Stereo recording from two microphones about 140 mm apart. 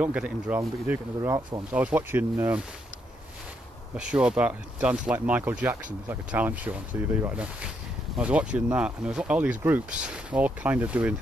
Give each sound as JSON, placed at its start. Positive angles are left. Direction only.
{"t": 0.0, "sound": "speech", "side_deg": -10}
{"t": 3.9, "sound": "speech", "side_deg": -10}